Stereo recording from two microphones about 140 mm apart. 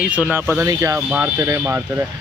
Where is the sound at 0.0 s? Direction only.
10° right (ahead or behind).